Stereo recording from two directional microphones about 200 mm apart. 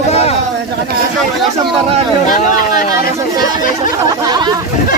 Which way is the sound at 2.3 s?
40° left (ahead or behind).